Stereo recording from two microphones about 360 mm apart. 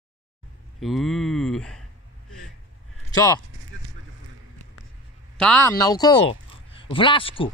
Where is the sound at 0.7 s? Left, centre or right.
Centre.